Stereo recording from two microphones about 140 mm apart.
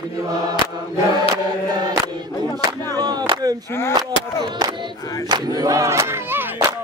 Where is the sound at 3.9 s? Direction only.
30° right (ahead or behind).